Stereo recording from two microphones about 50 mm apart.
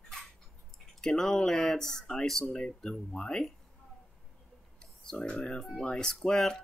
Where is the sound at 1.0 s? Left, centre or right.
Centre.